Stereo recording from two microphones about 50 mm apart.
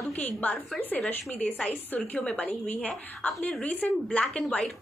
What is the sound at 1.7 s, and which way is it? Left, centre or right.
A woman's voice, left.